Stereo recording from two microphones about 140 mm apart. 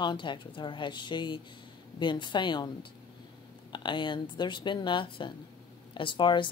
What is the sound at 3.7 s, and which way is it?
Speech, 35° left (ahead or behind).